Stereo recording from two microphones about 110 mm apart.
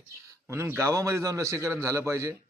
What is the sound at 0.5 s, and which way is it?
A man's voice, 20° right (ahead or behind).